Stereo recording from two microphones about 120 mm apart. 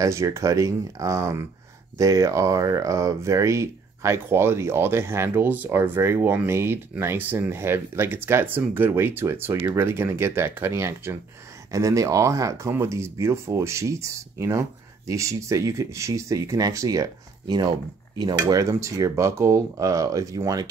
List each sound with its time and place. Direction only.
0.0 s speech: 25° right (ahead or behind)